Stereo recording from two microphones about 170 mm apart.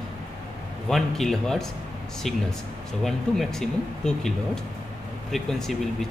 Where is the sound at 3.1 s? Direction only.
Centre (ahead or behind).